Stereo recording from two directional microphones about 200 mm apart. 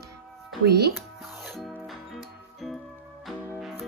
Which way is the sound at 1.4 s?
Centre (ahead or behind).